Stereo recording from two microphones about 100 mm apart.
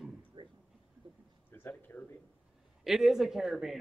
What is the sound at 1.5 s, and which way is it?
Speech, 20° left (ahead or behind).